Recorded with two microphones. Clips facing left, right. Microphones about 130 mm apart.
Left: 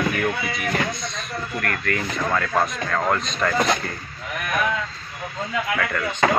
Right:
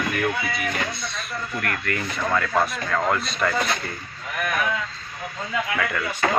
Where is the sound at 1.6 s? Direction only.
5° right (ahead or behind).